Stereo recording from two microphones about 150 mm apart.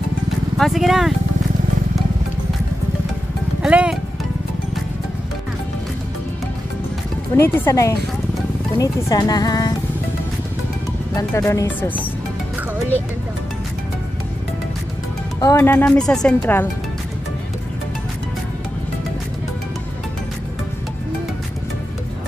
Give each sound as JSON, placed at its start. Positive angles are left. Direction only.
{"t": 0.6, "sound": "speech", "side_deg": 0}
{"t": 3.6, "sound": "speech", "side_deg": -5}
{"t": 7.3, "sound": "speech", "side_deg": 15}
{"t": 11.1, "sound": "speech", "side_deg": 20}
{"t": 15.4, "sound": "speech", "side_deg": 20}